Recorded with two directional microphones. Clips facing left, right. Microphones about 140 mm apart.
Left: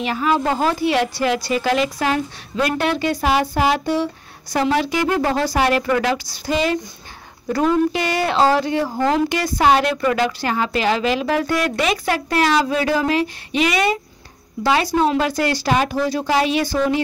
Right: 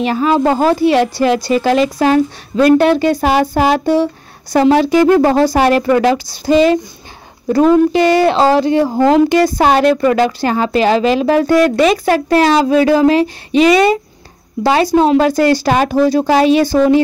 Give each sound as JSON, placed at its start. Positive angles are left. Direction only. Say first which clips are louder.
{"t": 0.0, "sound": "a woman's voice", "louder": "right 7 dB", "side_deg": -35}
{"t": 9.6, "sound": "a woman's voice", "louder": "right 5 dB", "side_deg": -40}